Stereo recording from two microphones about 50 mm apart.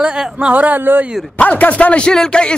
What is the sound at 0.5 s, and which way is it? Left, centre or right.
Speech, right.